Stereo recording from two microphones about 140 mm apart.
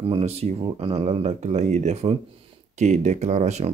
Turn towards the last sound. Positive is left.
turn(degrees=-55)  # may be behind; listen again after turning